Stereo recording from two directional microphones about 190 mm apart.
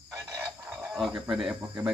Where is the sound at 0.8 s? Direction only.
5° right (ahead or behind).